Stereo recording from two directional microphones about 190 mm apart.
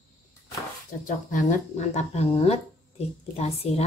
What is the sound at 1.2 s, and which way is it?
Speech, 45° left (ahead or behind).